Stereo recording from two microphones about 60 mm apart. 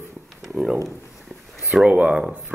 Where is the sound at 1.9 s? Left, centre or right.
Right.